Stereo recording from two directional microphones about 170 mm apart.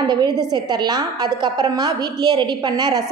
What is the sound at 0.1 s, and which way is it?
A woman's voice, 25° right (ahead or behind).